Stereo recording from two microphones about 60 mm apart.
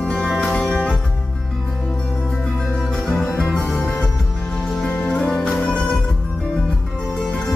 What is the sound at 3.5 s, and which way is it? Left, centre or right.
Music, centre.